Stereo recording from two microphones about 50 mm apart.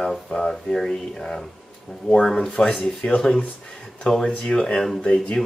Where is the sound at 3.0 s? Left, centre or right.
Left.